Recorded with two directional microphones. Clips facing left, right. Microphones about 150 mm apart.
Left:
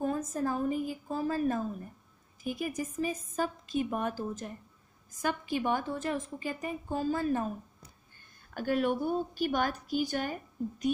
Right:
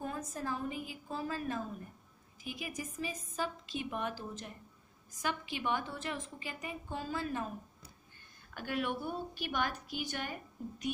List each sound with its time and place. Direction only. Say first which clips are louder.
0.0 s a woman's voice: left 8 dB; 40° left (ahead or behind)
8.5 s a woman's voice: left 7 dB; 40° left (ahead or behind)